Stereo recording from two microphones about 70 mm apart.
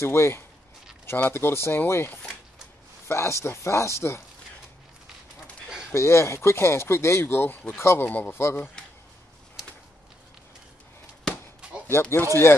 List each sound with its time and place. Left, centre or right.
0.0 s speech: left
5.9 s speech: left
8.1 s speech: left
8.4 s speech: left
11.9 s speech: left